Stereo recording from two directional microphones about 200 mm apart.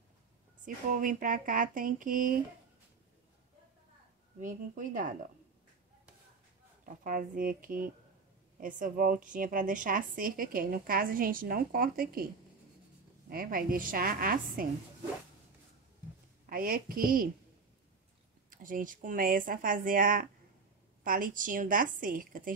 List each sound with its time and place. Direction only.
0.9 s a woman's voice: 40° right (ahead or behind)
4.4 s speech: 40° right (ahead or behind)
7.0 s a woman's voice: 40° right (ahead or behind)
13.3 s a woman's voice: 45° right (ahead or behind)
16.4 s a woman's voice: 45° right (ahead or behind)
18.5 s a woman's voice: 45° right (ahead or behind)